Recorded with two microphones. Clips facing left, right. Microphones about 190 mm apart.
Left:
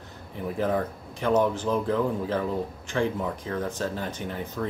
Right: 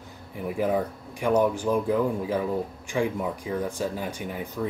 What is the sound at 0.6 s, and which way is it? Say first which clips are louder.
Speech: right 1 dB; 10° right (ahead or behind).